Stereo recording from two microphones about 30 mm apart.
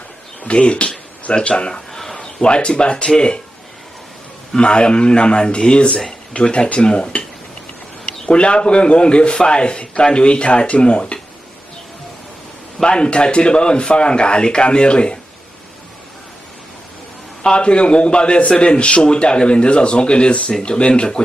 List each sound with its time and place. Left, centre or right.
0.4 s a man's voice: left
1.7 s a sound: centre
2.1 s speech: left
4.6 s a man's voice: left
6.4 s speech: left
6.7 s a man's voice: left
12.7 s a man's voice: left
17.4 s a man's voice: left